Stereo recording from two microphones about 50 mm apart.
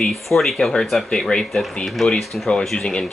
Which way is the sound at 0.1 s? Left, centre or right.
Centre.